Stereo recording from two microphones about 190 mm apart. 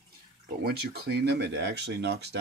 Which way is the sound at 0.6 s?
55° right (ahead or behind).